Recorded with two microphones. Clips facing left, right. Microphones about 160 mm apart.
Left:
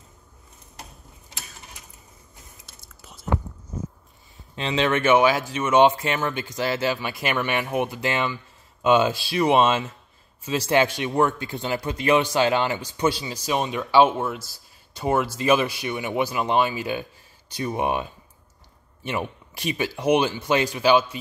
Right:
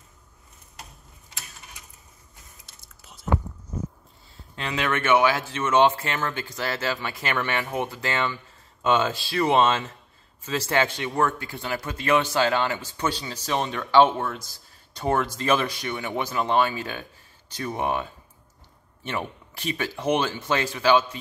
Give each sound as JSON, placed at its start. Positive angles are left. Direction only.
{"t": 4.4, "sound": "speech", "side_deg": 20}